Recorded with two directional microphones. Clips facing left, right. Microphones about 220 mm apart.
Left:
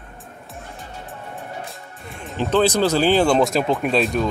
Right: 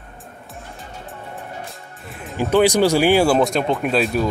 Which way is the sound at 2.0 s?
5° right (ahead or behind).